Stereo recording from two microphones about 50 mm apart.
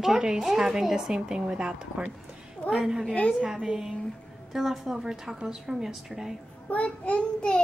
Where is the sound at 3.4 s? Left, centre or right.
Centre.